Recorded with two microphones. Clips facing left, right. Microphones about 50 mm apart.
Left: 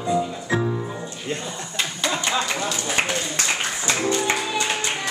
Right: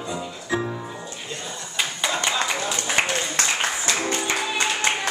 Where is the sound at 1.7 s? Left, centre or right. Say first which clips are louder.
Even; centre.